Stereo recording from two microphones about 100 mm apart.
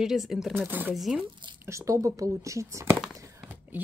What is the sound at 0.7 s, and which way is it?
Speech, 20° right (ahead or behind).